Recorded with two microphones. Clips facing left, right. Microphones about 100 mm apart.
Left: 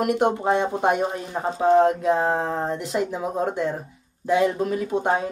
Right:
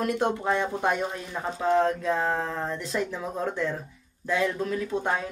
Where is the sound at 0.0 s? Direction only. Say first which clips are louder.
Left 5 dB; 15° left (ahead or behind).